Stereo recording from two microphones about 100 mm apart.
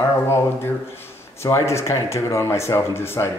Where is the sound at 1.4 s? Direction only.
30° left (ahead or behind).